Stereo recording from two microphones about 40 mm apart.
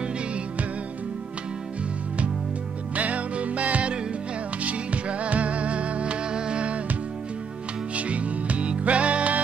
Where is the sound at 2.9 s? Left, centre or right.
Right.